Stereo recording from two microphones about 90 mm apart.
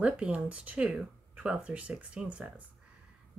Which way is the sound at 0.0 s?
15° right (ahead or behind).